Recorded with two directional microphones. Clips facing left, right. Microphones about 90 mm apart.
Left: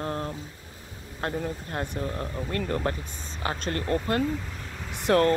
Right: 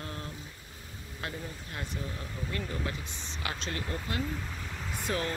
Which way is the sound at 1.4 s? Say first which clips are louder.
Left 9 dB; 50° left (ahead or behind).